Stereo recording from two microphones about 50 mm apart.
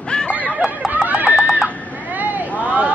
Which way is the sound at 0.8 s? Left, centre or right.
Right.